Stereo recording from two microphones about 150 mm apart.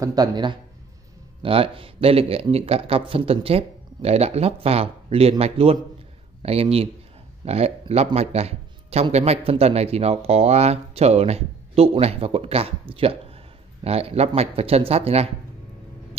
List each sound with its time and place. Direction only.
0.0 s a man's voice: 25° right (ahead or behind); by 15.2 s 40° right (ahead or behind)